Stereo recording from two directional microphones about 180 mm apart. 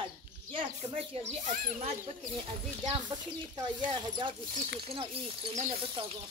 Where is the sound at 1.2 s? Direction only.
45° right (ahead or behind).